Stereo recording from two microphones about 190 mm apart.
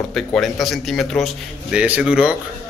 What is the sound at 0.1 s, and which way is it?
A man's voice, centre (ahead or behind).